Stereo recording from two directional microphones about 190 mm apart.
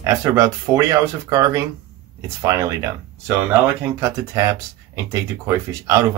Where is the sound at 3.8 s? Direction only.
15° right (ahead or behind).